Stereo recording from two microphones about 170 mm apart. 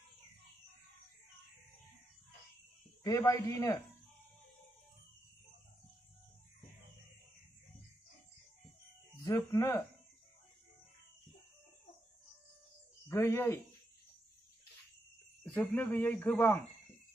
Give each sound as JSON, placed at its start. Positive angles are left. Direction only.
{"t": 3.0, "sound": "a man's voice", "side_deg": 20}
{"t": 9.5, "sound": "speech", "side_deg": 15}
{"t": 13.1, "sound": "speech", "side_deg": 15}
{"t": 15.4, "sound": "speech", "side_deg": 10}